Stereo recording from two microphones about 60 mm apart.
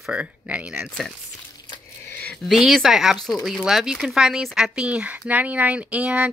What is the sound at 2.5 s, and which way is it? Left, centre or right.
Speech, centre.